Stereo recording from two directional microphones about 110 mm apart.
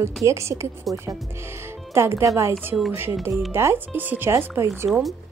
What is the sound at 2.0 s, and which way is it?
Speech, 25° right (ahead or behind).